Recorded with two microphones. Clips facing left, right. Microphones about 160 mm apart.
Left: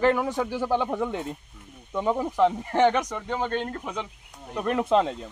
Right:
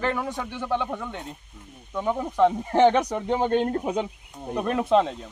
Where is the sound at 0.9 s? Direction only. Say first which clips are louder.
Left 5 dB; 15° left (ahead or behind).